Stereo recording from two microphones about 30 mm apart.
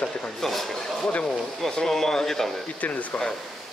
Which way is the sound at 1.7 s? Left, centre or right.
Centre.